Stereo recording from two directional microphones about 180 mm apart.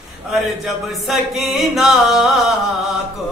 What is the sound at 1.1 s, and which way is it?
Music, centre (ahead or behind).